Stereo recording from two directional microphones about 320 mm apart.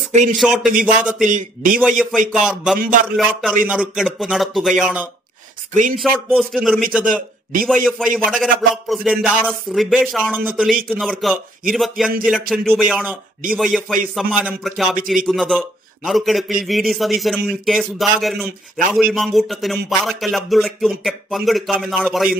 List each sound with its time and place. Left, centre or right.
0.1 s speech: right
0.4 s a man's voice: centre
1.2 s a man's voice: right
1.8 s a man's voice: centre
2.8 s a man's voice: right
3.2 s a man's voice: centre